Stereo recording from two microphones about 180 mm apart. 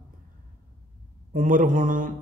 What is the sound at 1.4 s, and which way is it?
Speech, 50° right (ahead or behind).